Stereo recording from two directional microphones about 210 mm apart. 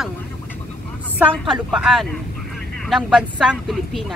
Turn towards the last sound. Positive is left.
turn(degrees=0)  # may be behind; listen again after turning